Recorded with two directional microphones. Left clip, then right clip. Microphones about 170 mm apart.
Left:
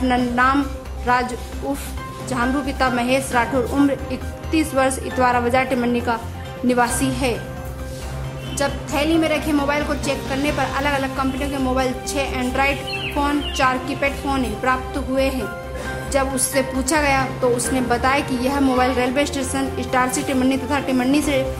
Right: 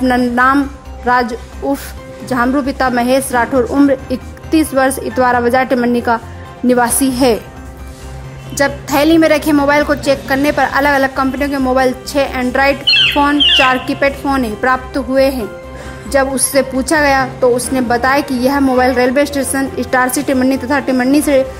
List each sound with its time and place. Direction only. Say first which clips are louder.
0.0 s a woman's voice: right 6 dB; 35° right (ahead or behind)
8.5 s a woman's voice: right 9 dB; 40° right (ahead or behind)